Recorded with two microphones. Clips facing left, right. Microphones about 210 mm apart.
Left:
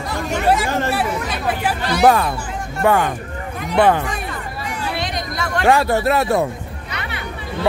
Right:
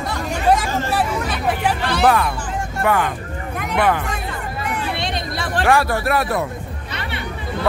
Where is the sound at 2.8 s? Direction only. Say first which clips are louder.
Left 3 dB; 30° left (ahead or behind).